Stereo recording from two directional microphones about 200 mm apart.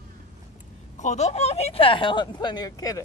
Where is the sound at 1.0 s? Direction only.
35° left (ahead or behind).